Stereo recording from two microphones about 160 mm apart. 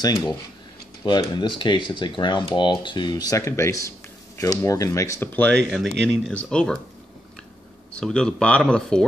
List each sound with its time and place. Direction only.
1.0 s speech: 30° left (ahead or behind); by 5.5 s 10° left (ahead or behind)
5.7 s speech: centre (ahead or behind)
8.0 s speech: 5° left (ahead or behind)